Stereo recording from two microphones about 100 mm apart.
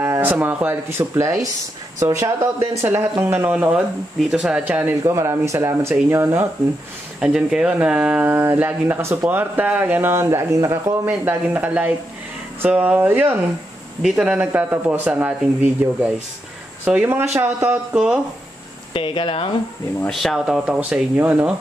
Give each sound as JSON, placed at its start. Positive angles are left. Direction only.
{"t": 0.0, "sound": "speech", "side_deg": -25}
{"t": 5.0, "sound": "speech", "side_deg": -30}
{"t": 7.2, "sound": "speech", "side_deg": -10}
{"t": 11.1, "sound": "speech", "side_deg": -15}
{"t": 17.9, "sound": "speech", "side_deg": -5}
{"t": 18.9, "sound": "speech", "side_deg": 60}
{"t": 20.1, "sound": "speech", "side_deg": 0}